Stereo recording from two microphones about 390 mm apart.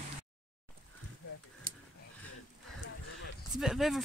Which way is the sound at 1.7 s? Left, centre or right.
Right.